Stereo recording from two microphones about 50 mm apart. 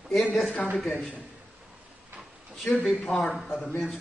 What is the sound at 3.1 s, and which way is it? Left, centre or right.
Speech, centre.